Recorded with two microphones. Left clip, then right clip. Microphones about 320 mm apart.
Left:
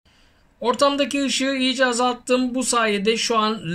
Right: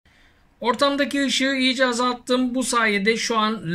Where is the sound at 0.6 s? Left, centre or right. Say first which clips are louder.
Left 1 dB; centre.